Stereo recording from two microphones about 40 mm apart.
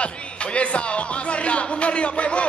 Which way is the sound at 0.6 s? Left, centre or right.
Left.